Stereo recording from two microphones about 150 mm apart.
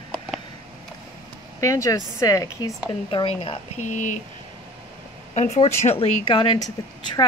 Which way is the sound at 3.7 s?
55° left (ahead or behind).